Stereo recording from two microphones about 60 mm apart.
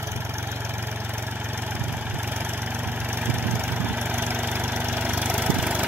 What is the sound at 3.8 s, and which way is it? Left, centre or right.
Engine, right.